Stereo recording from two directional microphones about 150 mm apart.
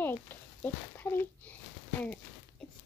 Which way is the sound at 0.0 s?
15° left (ahead or behind).